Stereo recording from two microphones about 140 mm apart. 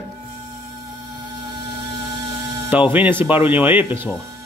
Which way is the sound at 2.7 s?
10° right (ahead or behind).